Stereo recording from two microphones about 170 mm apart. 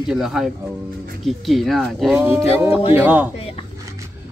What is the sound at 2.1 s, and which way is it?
Speech, 10° right (ahead or behind).